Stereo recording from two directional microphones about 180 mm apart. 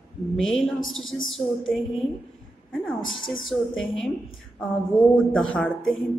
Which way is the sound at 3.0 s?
90° left.